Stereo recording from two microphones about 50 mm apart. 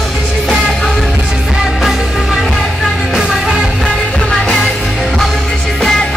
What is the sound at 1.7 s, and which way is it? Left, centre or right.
Music, centre.